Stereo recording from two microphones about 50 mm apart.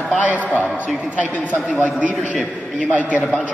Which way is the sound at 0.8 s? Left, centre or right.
Right.